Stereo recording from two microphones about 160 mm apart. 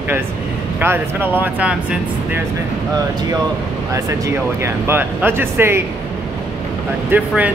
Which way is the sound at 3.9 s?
20° right (ahead or behind).